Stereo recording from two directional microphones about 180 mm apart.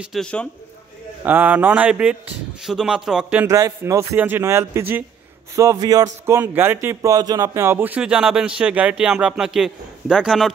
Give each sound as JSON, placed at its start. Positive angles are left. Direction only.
{"t": 0.0, "sound": "speech", "side_deg": 0}
{"t": 1.2, "sound": "speech", "side_deg": -10}
{"t": 3.4, "sound": "speech", "side_deg": -15}